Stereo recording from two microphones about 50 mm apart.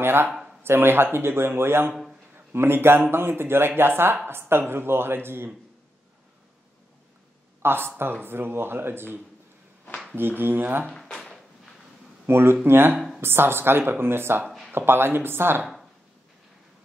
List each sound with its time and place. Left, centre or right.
0.0 s a man's voice: right
0.3 s a sound: centre
0.6 s a man's voice: right
7.6 s a man's voice: right
11.1 s a sound: centre
12.3 s a man's voice: right